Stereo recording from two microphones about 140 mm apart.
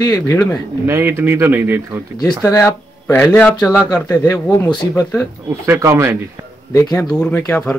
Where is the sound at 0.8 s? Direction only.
20° right (ahead or behind).